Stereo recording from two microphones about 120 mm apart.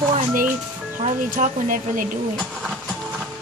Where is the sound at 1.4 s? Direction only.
90° right.